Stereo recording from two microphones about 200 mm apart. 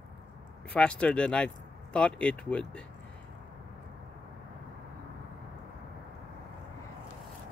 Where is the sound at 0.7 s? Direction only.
5° left (ahead or behind).